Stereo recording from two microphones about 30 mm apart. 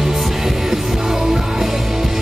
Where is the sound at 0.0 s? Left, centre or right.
Centre.